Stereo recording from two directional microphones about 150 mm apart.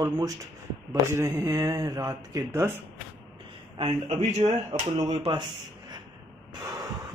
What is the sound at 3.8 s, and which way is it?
Speech, 45° right (ahead or behind).